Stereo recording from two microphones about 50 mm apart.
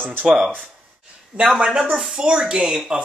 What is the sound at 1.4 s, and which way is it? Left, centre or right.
Speech, centre.